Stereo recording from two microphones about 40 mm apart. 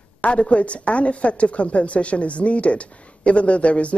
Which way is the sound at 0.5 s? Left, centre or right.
Left.